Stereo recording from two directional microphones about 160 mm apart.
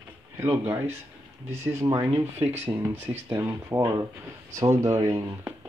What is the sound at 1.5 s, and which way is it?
Speech, 15° right (ahead or behind).